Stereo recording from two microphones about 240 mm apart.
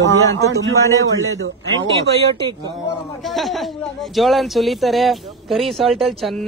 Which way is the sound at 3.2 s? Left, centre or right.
Centre.